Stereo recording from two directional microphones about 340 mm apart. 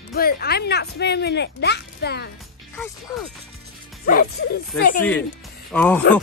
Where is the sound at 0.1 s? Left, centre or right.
Left.